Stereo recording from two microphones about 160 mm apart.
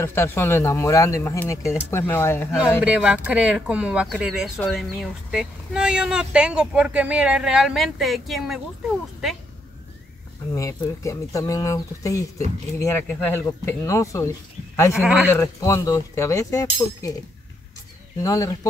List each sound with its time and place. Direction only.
0.0 s speech: 15° left (ahead or behind)
2.8 s speech: 5° right (ahead or behind)
10.5 s speech: 20° left (ahead or behind)
15.0 s speech: 5° right (ahead or behind)
15.3 s speech: 20° left (ahead or behind)
18.2 s speech: 20° left (ahead or behind)